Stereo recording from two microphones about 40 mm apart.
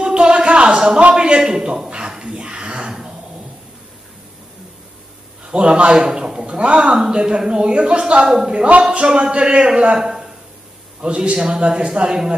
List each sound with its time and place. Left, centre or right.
0.0 s a sound: right
5.5 s speech: right
8.3 s a woman's voice: centre
8.5 s speech: right
8.9 s speech: right